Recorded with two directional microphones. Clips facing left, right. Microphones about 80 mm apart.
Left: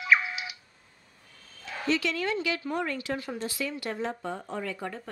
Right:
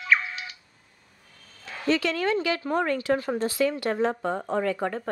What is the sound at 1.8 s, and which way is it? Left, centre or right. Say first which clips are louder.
Speech: right 4 dB; right.